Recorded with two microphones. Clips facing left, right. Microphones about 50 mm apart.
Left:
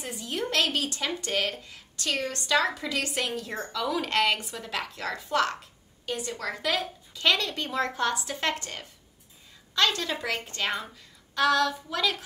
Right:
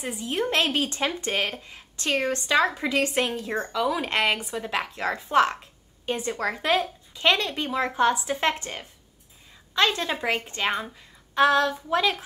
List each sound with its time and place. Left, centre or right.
0.0 s a woman's voice: centre
6.7 s speech: right